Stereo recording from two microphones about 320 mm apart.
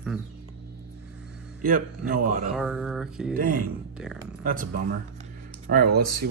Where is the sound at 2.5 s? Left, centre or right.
Centre.